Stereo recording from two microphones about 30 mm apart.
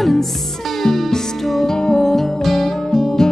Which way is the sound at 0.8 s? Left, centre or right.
Left.